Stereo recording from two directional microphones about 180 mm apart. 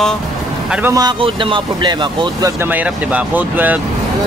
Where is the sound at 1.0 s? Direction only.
25° right (ahead or behind).